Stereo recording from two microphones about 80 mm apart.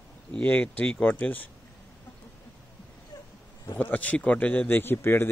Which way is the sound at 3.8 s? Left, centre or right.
Left.